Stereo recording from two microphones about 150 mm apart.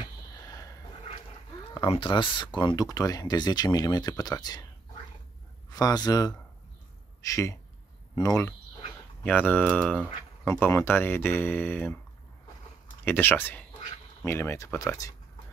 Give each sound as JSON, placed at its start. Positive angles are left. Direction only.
{"t": 0.0, "sound": "sniff", "side_deg": 25}
{"t": 1.7, "sound": "speech", "side_deg": 35}
{"t": 5.7, "sound": "a man's voice", "side_deg": 25}
{"t": 9.2, "sound": "speech", "side_deg": 10}
{"t": 13.0, "sound": "speech", "side_deg": 15}